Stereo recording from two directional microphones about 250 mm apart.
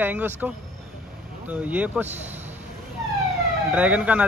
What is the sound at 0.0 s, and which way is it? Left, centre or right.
Speech, centre.